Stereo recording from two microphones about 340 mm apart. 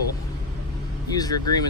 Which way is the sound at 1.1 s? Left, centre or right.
Centre.